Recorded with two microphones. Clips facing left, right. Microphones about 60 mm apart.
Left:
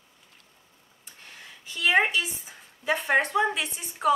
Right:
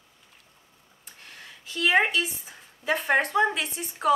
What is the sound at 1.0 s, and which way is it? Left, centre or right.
Speech, centre.